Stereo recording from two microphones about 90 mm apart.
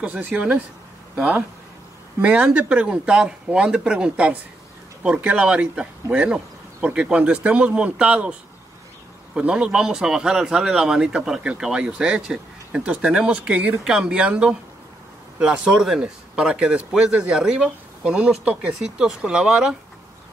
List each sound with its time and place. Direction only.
0.0 s a man's voice: 15° right (ahead or behind)
2.2 s a man's voice: 15° right (ahead or behind)